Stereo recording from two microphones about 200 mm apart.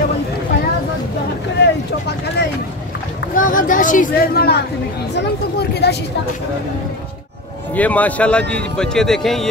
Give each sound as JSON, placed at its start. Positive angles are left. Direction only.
{"t": 1.6, "sound": "a sound", "side_deg": 60}
{"t": 3.3, "sound": "speech", "side_deg": 40}
{"t": 7.7, "sound": "a man's voice", "side_deg": 5}